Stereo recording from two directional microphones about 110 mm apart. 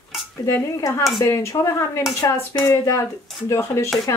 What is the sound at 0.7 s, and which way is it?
Speech, 30° left (ahead or behind).